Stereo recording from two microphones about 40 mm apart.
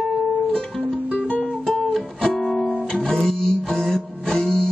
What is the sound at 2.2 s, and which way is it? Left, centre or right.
Music, centre.